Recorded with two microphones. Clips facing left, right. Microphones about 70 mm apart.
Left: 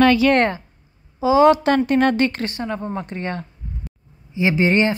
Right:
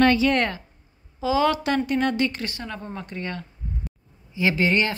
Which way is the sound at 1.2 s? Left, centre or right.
Left.